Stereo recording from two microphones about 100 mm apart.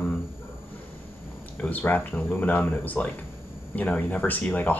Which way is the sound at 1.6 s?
15° left (ahead or behind).